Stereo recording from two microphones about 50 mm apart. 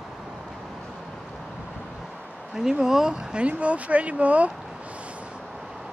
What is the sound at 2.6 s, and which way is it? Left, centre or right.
Speech, centre.